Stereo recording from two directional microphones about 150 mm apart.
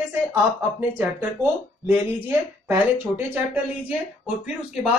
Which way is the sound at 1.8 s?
15° right (ahead or behind).